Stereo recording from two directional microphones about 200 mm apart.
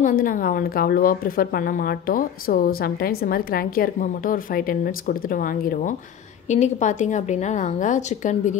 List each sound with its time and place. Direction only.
0.0 s a woman's voice: 45° left (ahead or behind)